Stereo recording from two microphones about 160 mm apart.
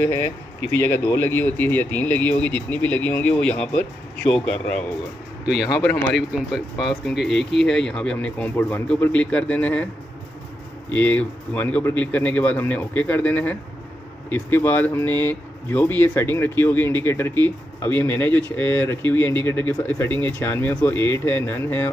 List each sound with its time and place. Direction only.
0.0 s speech: 15° left (ahead or behind)
5.4 s speech: 5° right (ahead or behind)
5.8 s speech: 10° left (ahead or behind)
10.9 s speech: 10° left (ahead or behind)